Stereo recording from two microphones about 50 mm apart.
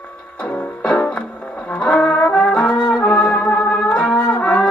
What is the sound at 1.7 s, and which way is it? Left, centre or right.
Brass instrument, left.